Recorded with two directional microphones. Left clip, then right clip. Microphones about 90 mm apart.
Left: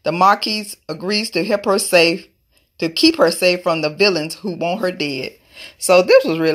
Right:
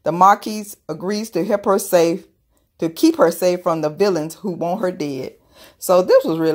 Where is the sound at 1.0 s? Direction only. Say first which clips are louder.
Left 3 dB; 10° right (ahead or behind).